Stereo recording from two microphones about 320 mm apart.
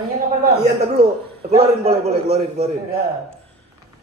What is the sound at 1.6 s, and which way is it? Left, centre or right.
Speech, centre.